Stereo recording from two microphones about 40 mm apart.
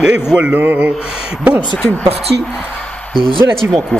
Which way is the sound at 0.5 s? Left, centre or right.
Right.